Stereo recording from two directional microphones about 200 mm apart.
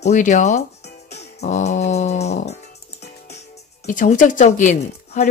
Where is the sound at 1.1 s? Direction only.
35° left (ahead or behind).